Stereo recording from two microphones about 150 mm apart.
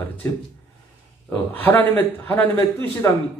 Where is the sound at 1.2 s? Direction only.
10° left (ahead or behind).